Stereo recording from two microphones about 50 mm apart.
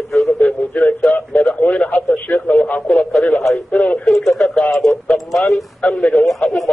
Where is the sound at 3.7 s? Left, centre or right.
Left.